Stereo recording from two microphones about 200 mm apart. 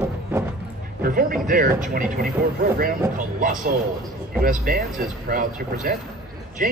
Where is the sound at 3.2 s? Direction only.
40° right (ahead or behind).